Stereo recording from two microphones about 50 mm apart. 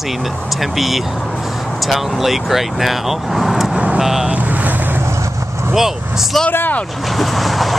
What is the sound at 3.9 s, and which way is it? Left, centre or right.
Vehicle, centre.